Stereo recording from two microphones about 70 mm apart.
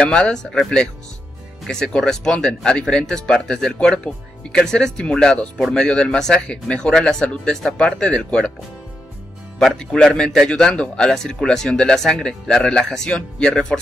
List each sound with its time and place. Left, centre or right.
0.0 s speech: centre
9.8 s speech: centre